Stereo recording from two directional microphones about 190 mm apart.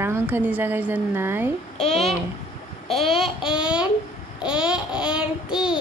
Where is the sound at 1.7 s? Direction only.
35° left (ahead or behind).